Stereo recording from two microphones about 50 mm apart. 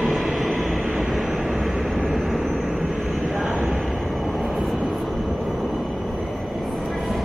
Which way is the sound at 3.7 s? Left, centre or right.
Centre.